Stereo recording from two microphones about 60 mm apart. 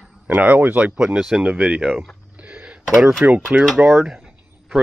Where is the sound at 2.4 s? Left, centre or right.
Right.